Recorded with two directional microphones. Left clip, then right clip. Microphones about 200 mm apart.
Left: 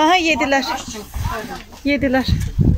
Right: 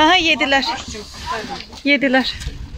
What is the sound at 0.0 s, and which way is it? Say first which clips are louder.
Speech: right 1 dB; 5° left (ahead or behind).